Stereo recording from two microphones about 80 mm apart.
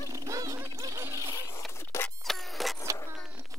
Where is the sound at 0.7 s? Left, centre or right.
Right.